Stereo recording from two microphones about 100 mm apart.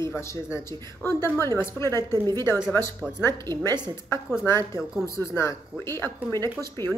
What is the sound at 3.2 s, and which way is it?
Speech, 25° left (ahead or behind).